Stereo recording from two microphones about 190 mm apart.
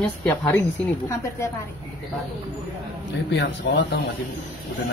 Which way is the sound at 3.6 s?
70° left (ahead or behind).